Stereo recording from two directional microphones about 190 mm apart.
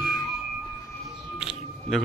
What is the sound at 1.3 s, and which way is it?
Music, 5° right (ahead or behind).